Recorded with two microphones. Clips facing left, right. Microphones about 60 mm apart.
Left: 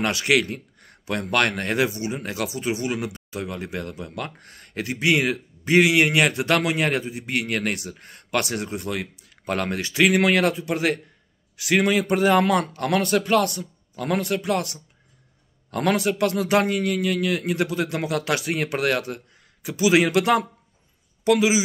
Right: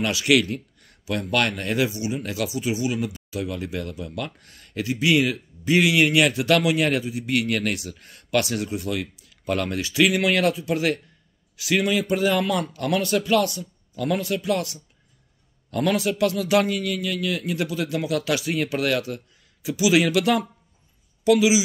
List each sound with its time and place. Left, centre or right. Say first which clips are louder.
0.0 s a man's voice: right 1 dB; left
3.3 s a man's voice: right 2 dB; left